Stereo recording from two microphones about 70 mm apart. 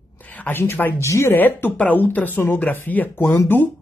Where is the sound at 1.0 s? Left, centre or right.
Left.